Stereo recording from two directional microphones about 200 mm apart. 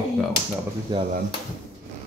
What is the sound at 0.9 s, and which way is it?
Speech, 25° right (ahead or behind).